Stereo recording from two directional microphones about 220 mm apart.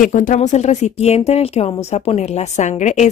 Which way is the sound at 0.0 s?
35° left (ahead or behind).